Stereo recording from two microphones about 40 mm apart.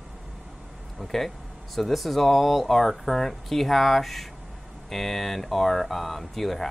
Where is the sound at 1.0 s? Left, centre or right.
Centre.